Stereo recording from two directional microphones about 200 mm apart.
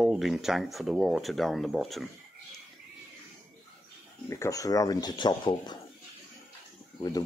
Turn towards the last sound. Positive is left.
turn(degrees=20)  # may be behind; listen again after turning